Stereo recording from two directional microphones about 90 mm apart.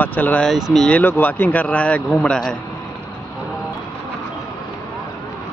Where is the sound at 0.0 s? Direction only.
20° left (ahead or behind).